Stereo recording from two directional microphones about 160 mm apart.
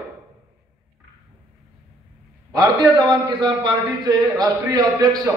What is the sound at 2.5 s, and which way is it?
A man's voice, 25° right (ahead or behind).